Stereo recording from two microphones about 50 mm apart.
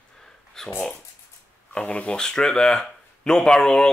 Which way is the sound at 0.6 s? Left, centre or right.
Centre.